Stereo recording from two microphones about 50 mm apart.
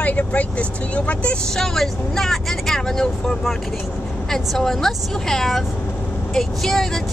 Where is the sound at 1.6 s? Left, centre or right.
Centre.